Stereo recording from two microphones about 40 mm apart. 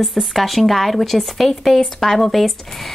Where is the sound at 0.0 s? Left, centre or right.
Centre.